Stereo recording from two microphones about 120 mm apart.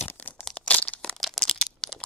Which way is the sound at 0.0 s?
15° left (ahead or behind).